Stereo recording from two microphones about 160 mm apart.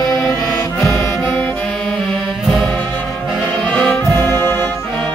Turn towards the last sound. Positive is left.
turn(degrees=10)  # may be behind; listen again after turning